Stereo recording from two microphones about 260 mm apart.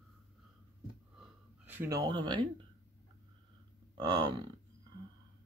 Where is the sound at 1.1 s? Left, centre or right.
Centre.